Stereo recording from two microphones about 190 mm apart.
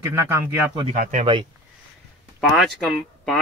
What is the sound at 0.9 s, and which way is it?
Speech, 40° right (ahead or behind).